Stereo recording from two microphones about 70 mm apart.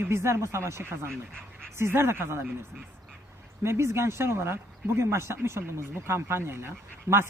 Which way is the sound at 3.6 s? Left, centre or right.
Right.